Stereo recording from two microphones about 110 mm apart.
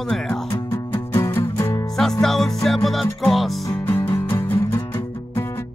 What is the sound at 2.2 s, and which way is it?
Music, 5° left (ahead or behind).